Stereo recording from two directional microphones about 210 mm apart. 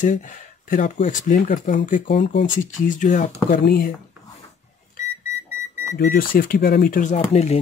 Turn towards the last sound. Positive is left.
turn(degrees=30)  # may be behind; listen again after turning